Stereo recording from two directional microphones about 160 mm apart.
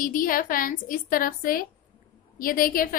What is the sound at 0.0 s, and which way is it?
A woman's voice, 60° left (ahead or behind).